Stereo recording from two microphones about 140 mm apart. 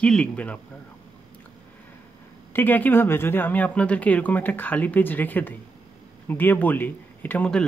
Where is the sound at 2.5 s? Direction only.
15° left (ahead or behind).